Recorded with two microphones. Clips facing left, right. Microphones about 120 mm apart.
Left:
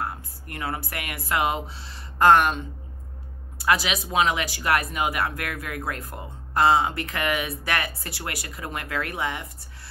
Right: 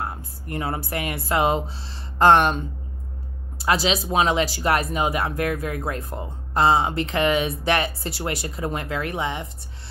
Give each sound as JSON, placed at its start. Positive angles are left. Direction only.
{"t": 0.0, "sound": "speech", "side_deg": -25}
{"t": 3.5, "sound": "speech", "side_deg": -30}